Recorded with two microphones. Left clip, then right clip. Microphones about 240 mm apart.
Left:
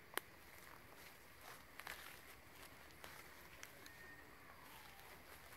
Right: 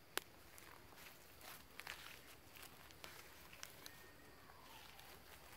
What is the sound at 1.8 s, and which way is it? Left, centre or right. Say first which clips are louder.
Walk: even; centre.